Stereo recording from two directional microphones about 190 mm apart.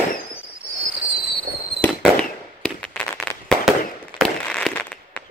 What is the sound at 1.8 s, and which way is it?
Fireworks, 5° left (ahead or behind).